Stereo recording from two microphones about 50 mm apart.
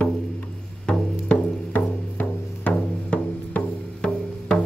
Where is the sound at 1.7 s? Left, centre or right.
Left.